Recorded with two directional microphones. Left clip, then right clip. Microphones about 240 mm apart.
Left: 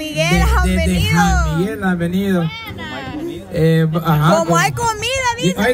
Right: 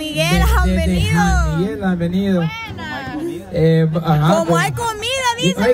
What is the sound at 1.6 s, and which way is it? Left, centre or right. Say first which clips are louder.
Speech: left 1 dB; left.